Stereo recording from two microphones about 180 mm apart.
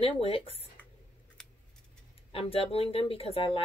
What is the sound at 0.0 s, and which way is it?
Speech, 30° left (ahead or behind).